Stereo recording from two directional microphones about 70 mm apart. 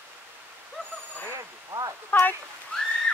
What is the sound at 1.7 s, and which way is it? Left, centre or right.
Speech, right.